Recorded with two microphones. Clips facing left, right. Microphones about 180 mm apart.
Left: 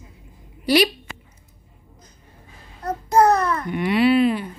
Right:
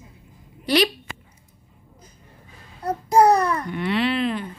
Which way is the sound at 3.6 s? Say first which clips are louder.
Left 5 dB; 10° left (ahead or behind).